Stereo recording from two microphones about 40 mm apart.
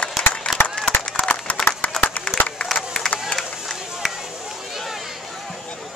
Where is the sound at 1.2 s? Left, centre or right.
Left.